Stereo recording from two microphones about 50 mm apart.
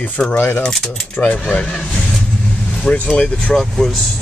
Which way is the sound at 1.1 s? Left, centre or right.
Left.